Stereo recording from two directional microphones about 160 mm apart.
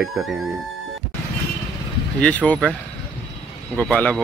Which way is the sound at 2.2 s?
10° left (ahead or behind).